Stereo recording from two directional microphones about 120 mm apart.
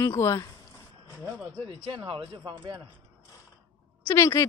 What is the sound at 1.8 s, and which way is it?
Speech, 45° right (ahead or behind).